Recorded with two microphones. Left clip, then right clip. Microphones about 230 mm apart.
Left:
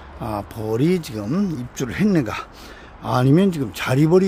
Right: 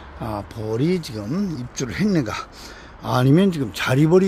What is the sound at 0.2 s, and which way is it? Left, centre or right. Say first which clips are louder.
A man's voice: left 2 dB; centre.